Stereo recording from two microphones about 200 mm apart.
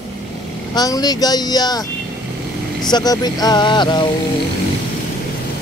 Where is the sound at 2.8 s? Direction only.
20° left (ahead or behind).